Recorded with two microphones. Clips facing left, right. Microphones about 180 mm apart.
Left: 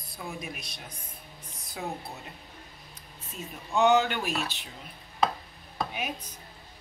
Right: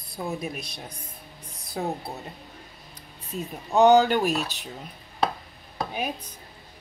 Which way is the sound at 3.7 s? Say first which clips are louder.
Right 6 dB; 35° right (ahead or behind).